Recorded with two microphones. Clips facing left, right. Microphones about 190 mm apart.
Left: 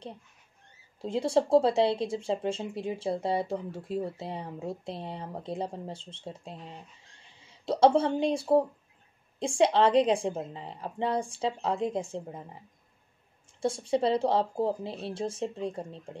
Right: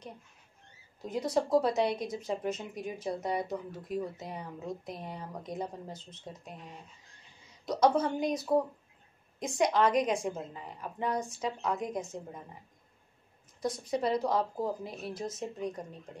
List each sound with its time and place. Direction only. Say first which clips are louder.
1.0 s speech: left 4 dB; 30° left (ahead or behind)
13.6 s speech: left 5 dB; 30° left (ahead or behind)